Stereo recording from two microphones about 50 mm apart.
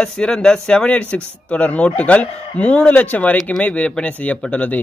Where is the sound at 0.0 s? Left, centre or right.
Centre.